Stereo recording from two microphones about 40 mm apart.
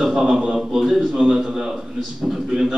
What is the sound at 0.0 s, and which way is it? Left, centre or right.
A man's voice, centre.